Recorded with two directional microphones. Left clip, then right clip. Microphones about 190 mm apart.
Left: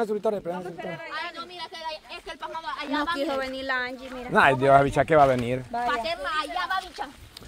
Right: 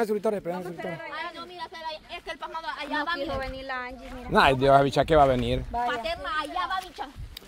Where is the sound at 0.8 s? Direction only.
10° left (ahead or behind).